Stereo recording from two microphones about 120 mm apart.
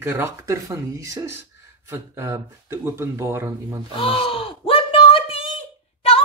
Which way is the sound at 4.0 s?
50° left (ahead or behind).